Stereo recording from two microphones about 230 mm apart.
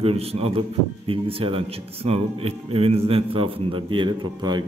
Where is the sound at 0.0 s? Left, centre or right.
Right.